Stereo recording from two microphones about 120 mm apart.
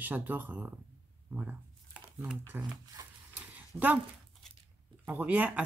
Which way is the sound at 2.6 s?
15° right (ahead or behind).